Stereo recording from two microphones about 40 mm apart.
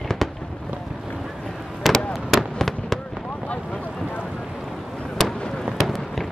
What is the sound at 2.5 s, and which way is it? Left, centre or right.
Fireworks, centre.